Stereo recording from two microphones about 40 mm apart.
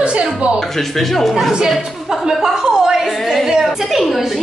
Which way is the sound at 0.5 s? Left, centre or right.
Centre.